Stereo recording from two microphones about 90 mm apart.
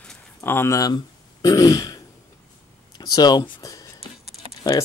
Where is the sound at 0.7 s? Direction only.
40° left (ahead or behind).